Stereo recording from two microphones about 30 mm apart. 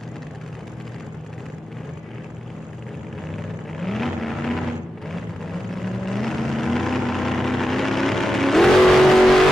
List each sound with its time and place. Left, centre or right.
3.3 s vehicle: centre